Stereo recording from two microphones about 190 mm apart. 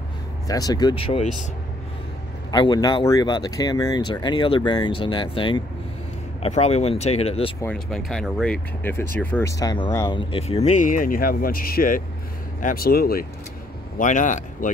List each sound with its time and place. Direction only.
0.5 s speech: 20° left (ahead or behind)
2.5 s speech: 20° left (ahead or behind)
7.6 s speech: 5° left (ahead or behind); by 14.7 s 40° left (ahead or behind)